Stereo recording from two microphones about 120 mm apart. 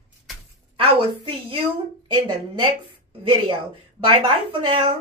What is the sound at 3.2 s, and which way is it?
A woman's voice, 45° right (ahead or behind).